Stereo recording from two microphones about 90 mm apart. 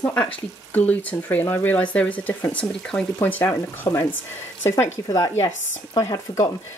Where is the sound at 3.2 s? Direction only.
20° left (ahead or behind).